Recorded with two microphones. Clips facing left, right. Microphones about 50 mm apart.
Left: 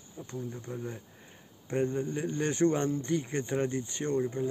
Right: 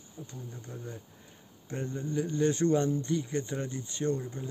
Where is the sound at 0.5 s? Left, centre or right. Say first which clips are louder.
Left 4 dB; left.